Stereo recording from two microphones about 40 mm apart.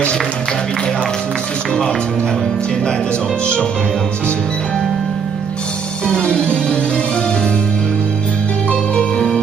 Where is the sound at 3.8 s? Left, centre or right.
Centre.